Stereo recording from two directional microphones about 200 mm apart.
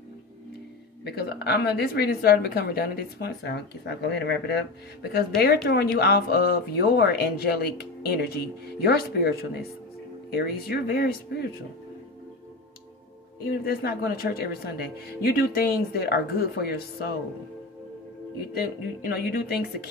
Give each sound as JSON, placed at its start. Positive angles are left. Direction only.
{"t": 1.0, "sound": "speech", "side_deg": 55}
{"t": 13.5, "sound": "speech", "side_deg": 50}
{"t": 18.5, "sound": "speech", "side_deg": 50}